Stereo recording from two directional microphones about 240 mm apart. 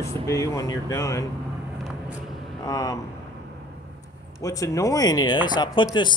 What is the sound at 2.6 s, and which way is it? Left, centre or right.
Speech, centre.